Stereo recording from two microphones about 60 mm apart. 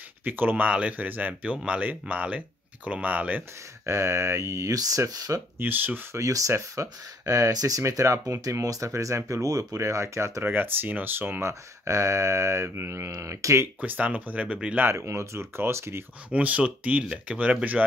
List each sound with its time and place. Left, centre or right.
0.2 s speech: right
3.8 s speech: right
5.6 s speech: right
6.1 s speech: right
8.6 s speech: right
9.8 s speech: right
10.4 s speech: right
11.4 s speech: right
13.7 s speech: right
15.0 s speech: right
16.3 s speech: right